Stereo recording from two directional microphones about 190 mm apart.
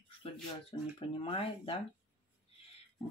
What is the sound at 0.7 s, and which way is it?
Speech, 25° left (ahead or behind).